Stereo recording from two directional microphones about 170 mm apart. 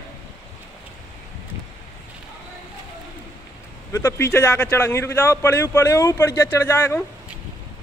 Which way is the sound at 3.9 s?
15° left (ahead or behind).